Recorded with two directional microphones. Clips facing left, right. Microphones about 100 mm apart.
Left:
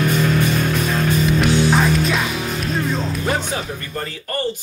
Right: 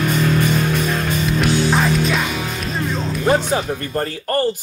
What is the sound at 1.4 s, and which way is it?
Music, centre (ahead or behind).